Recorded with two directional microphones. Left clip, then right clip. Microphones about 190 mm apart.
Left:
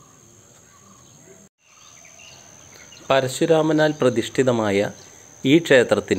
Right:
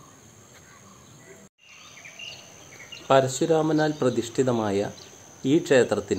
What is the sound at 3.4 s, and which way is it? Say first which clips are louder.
Speech: left 5 dB; 15° left (ahead or behind).